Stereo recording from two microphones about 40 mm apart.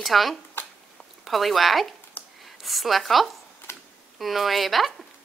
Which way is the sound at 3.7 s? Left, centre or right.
Left.